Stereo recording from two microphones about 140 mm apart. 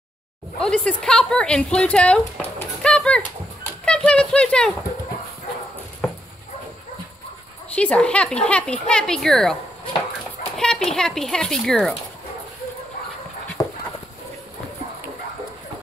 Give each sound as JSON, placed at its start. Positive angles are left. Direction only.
{"t": 0.6, "sound": "speech", "side_deg": 5}
{"t": 3.8, "sound": "a sound", "side_deg": 5}
{"t": 6.0, "sound": "a sound", "side_deg": 0}
{"t": 7.7, "sound": "speech", "side_deg": 10}
{"t": 10.6, "sound": "speech", "side_deg": 5}
{"t": 13.6, "sound": "dog", "side_deg": 30}